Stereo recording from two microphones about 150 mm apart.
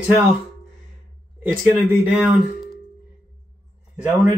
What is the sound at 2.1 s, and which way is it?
Speech, 5° right (ahead or behind).